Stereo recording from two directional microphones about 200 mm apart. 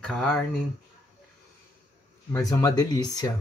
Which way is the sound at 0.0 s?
5° left (ahead or behind).